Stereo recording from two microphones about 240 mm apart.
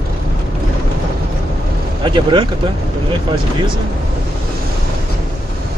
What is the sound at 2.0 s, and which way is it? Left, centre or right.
Speech, centre.